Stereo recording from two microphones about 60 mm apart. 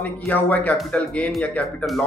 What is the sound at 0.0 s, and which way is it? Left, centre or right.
Speech, left.